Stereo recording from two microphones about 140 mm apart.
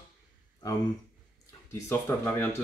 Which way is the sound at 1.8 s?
15° left (ahead or behind).